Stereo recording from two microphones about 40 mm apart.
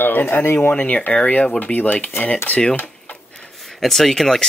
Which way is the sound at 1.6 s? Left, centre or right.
Left.